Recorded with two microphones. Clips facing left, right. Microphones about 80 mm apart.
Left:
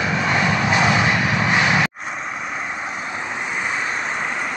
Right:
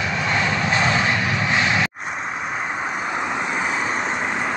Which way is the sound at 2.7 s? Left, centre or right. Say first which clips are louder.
Right 3 dB; right.